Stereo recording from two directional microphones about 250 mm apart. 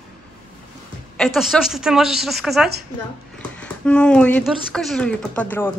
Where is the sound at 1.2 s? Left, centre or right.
Centre.